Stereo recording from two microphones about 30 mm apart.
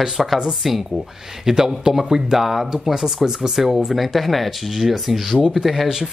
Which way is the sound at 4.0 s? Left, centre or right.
Centre.